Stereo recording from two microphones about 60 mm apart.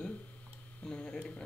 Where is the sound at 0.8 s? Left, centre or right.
Centre.